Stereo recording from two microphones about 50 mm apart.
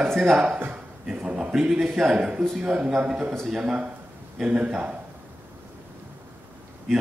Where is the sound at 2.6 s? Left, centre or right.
Right.